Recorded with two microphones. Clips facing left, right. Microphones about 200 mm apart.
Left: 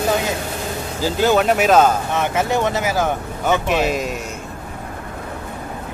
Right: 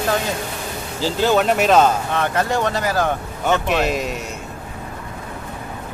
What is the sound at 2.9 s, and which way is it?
Speech, 5° left (ahead or behind).